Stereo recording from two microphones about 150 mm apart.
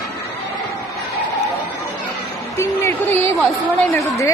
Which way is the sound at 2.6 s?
20° left (ahead or behind).